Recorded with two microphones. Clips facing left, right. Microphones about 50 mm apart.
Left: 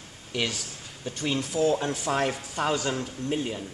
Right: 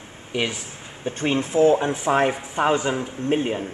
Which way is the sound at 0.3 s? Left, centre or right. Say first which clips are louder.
Right 4 dB; right.